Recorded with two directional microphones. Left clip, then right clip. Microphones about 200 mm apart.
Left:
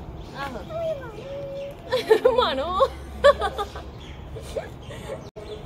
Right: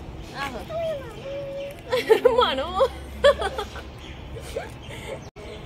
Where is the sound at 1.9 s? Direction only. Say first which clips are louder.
Even; 10° right (ahead or behind).